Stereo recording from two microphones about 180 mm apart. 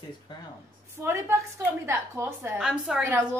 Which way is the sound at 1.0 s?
15° right (ahead or behind).